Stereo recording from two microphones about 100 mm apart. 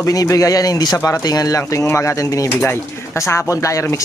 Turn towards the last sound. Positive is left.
turn(degrees=30)  # may be behind; listen again after turning